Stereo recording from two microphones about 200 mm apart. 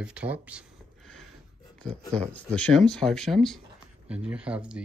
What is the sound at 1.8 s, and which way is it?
Speech, 5° left (ahead or behind).